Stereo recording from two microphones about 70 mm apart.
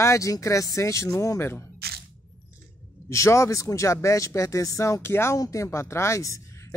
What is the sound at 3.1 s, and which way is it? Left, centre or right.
Speech, left.